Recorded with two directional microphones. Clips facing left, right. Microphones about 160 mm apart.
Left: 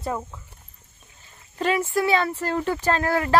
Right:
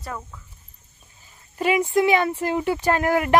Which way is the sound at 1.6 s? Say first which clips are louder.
Right 3 dB; 15° right (ahead or behind).